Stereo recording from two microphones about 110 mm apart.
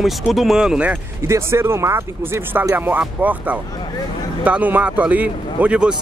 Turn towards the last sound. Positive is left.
turn(degrees=-10)  # may be behind; listen again after turning